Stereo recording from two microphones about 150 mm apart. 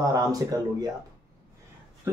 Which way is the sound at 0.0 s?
25° right (ahead or behind).